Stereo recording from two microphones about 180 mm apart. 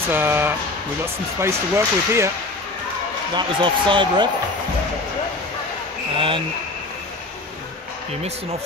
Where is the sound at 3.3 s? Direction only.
25° right (ahead or behind).